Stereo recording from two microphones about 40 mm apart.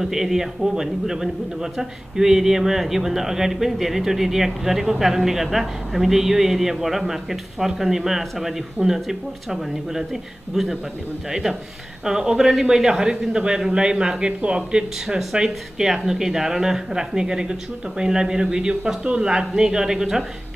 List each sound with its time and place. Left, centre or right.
0.0 s a man's voice: centre
12.4 s a man's voice: centre